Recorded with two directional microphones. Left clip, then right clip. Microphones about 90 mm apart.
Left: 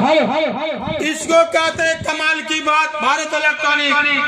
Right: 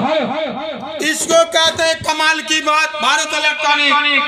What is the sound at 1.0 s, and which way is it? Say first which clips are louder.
Music: right 1 dB; 90° left.